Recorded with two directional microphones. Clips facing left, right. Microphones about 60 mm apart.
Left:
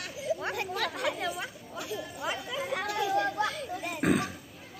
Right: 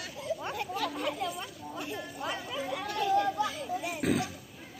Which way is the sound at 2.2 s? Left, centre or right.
Left.